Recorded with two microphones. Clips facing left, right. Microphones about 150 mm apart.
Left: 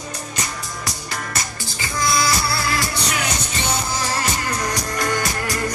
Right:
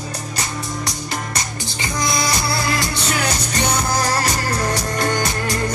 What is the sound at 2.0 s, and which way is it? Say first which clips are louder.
Music: left 1 dB; 20° right (ahead or behind).